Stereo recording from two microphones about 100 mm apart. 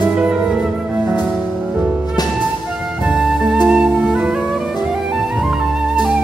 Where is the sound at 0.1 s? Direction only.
10° right (ahead or behind).